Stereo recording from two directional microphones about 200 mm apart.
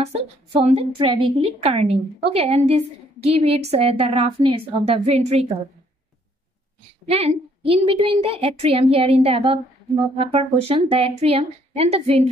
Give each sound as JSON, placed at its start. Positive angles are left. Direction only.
{"t": 0.0, "sound": "a woman's voice", "side_deg": -30}
{"t": 7.1, "sound": "a woman's voice", "side_deg": -30}